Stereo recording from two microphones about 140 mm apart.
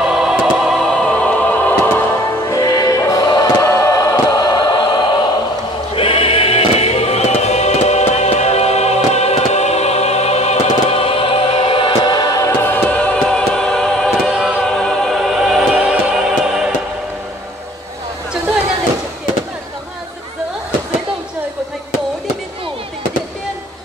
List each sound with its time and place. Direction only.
0.0 s music: 5° right (ahead or behind)
2.5 s music: 25° left (ahead or behind); by 14.6 s centre (ahead or behind)
14.8 s choir: centre (ahead or behind)